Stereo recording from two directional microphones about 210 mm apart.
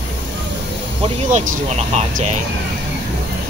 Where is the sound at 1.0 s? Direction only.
35° right (ahead or behind).